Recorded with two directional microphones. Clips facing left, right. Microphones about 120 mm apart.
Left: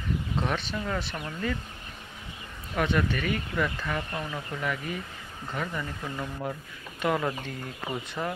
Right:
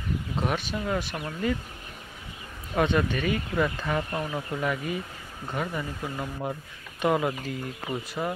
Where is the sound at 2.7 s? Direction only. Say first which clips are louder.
Right 2 dB; 20° right (ahead or behind).